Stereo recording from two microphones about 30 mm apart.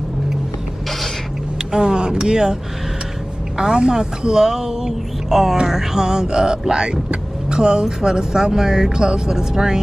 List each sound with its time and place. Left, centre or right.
1.7 s speech: right
3.5 s speech: right
5.7 s music: centre
6.2 s speech: right